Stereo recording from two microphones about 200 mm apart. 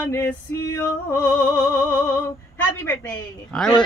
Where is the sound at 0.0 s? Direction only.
10° left (ahead or behind).